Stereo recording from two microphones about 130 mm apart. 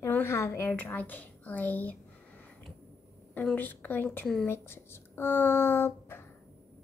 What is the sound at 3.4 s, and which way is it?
A woman's voice, 15° left (ahead or behind).